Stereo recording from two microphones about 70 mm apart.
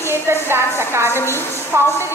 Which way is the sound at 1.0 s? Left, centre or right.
Left.